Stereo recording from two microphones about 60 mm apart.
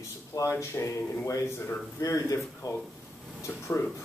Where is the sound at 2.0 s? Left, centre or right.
Left.